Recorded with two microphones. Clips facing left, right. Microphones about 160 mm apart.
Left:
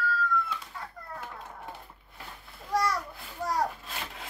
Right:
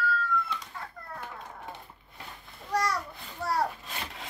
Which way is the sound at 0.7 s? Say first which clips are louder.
Even; 10° left (ahead or behind).